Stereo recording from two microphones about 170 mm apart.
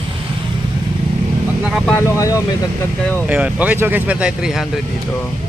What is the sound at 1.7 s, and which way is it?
Speech, 5° right (ahead or behind).